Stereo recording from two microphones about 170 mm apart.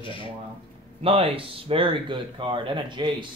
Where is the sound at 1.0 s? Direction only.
35° right (ahead or behind).